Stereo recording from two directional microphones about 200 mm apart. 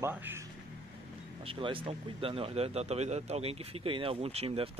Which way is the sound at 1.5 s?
25° right (ahead or behind).